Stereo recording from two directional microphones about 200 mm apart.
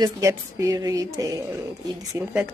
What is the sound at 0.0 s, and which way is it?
A woman's voice, 15° right (ahead or behind).